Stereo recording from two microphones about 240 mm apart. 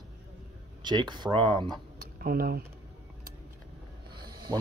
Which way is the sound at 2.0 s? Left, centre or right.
Right.